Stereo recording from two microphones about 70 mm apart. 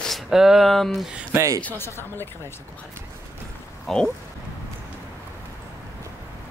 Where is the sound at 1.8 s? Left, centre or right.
Left.